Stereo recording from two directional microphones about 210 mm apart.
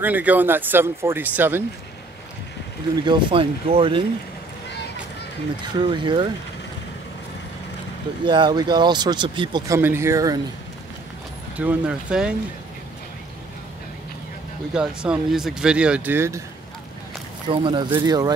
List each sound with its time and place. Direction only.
0.0 s speech: 10° right (ahead or behind)
3.1 s speech: 25° right (ahead or behind)
5.8 s speech: 20° right (ahead or behind)
8.3 s speech: 20° right (ahead or behind)
9.8 s speech: 10° right (ahead or behind)
11.5 s speech: 5° right (ahead or behind)
14.7 s speech: 5° right (ahead or behind)
17.5 s speech: 25° right (ahead or behind)